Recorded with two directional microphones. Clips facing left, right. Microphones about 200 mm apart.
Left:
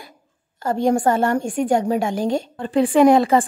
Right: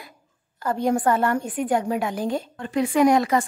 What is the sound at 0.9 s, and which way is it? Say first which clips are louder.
Speech: left 3 dB; 25° left (ahead or behind).